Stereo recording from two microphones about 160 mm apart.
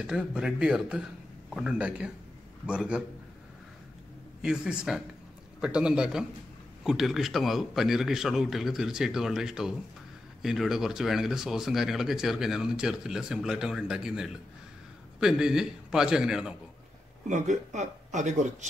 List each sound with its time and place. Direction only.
0.0 s a man's voice: 5° right (ahead or behind)
4.4 s speech: 5° right (ahead or behind)
17.3 s speech: 50° right (ahead or behind)